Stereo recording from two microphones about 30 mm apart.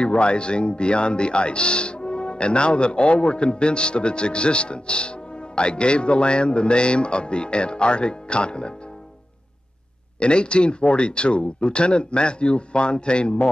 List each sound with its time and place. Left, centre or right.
0.0 s speech: left
10.1 s speech: left